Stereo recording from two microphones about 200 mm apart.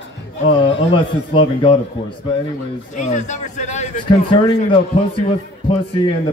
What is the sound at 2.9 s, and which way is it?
Speech, 35° left (ahead or behind).